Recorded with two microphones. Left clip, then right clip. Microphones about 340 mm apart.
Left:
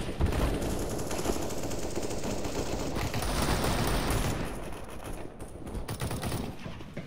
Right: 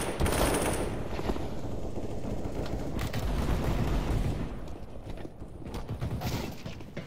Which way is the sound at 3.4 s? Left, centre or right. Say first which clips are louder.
Left 5 dB; left.